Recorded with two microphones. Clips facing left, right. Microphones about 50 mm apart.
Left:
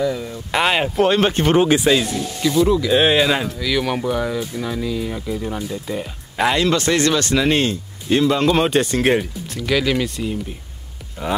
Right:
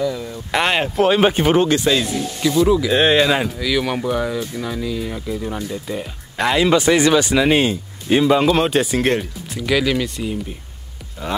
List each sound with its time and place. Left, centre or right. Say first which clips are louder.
0.0 s speech: left 1 dB; centre
0.3 s speech: right 1 dB; centre
6.6 s speech: right 3 dB; centre
11.2 s speech: left 2 dB; centre